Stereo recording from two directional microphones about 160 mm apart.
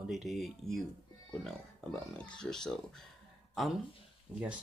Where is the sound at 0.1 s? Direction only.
Centre (ahead or behind).